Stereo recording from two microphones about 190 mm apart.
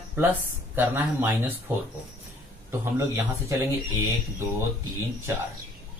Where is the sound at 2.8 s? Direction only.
15° right (ahead or behind).